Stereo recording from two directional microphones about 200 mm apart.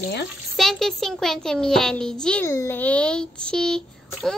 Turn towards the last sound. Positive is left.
turn(degrees=5)  # may be behind; listen again after turning